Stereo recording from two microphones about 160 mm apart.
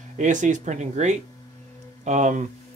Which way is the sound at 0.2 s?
50° right (ahead or behind).